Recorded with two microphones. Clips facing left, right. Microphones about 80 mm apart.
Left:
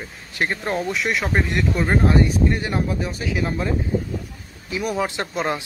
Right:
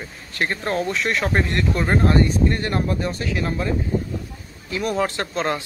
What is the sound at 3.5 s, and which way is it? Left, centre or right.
Speech, centre.